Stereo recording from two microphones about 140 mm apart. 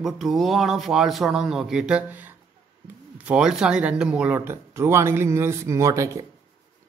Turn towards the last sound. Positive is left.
turn(degrees=-20)  # may be behind; listen again after turning